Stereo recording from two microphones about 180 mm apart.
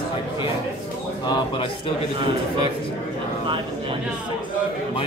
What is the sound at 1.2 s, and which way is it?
Speech, 25° left (ahead or behind).